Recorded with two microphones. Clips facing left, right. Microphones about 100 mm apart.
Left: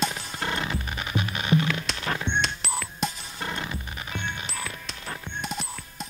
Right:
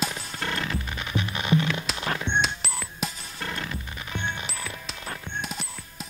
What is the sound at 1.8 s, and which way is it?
Music, 5° right (ahead or behind).